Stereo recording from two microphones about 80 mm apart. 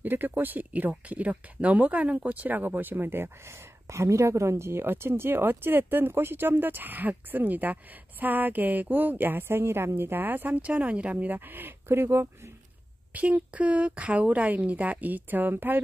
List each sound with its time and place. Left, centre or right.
0.0 s speech: right
13.1 s speech: centre